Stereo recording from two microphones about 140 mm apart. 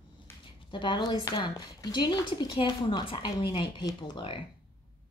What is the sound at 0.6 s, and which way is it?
Speech, 35° left (ahead or behind).